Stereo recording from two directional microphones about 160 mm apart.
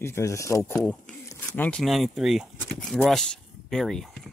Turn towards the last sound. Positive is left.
turn(degrees=5)  # may be behind; listen again after turning